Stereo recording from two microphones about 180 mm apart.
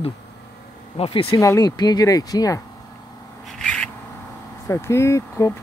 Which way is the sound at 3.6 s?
5° left (ahead or behind).